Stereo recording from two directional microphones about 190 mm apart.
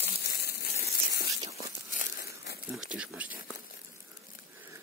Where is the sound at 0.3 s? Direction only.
55° left (ahead or behind).